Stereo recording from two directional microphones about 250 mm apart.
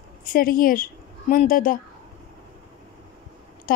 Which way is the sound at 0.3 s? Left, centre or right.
Left.